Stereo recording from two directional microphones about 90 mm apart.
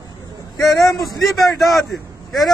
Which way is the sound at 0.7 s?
35° left (ahead or behind).